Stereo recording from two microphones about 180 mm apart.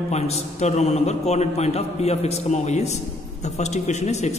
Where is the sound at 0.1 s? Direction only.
40° left (ahead or behind).